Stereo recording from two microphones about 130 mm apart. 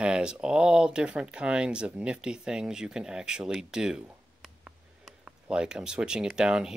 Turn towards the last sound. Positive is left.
turn(degrees=-5)  # may be behind; listen again after turning